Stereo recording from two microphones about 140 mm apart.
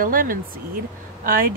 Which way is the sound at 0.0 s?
80° right.